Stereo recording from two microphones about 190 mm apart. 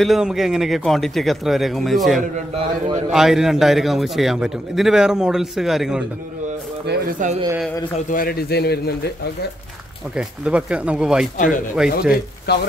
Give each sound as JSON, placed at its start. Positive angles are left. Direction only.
{"t": 0.0, "sound": "a man's voice", "side_deg": 0}
{"t": 6.9, "sound": "speech", "side_deg": -45}
{"t": 8.1, "sound": "a man's voice", "side_deg": 50}
{"t": 10.1, "sound": "a man's voice", "side_deg": -5}
{"t": 11.3, "sound": "speech", "side_deg": 45}
{"t": 11.7, "sound": "a man's voice", "side_deg": -5}
{"t": 12.5, "sound": "a man's voice", "side_deg": 60}